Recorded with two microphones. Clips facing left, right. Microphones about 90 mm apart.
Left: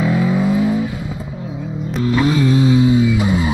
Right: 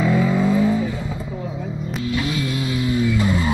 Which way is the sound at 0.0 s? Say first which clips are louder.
Left 2 dB; 10° left (ahead or behind).